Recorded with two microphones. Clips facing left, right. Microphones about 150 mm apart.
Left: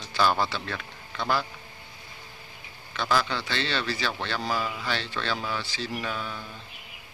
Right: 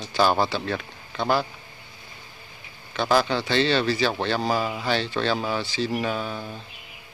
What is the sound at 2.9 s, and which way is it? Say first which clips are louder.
Speech: right 5 dB; 35° right (ahead or behind).